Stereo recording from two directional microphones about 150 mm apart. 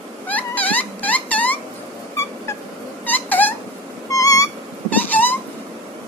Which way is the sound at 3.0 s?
10° left (ahead or behind).